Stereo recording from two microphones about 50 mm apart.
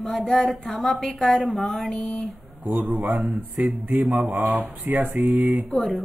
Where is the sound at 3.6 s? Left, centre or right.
Right.